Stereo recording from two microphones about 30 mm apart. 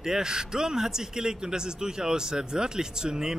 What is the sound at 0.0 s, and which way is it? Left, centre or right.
Speech, right.